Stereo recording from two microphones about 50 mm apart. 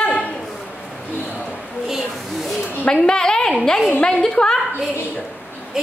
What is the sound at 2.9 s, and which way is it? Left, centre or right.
A woman's voice, centre.